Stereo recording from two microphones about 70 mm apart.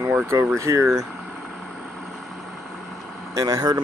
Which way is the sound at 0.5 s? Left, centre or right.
Right.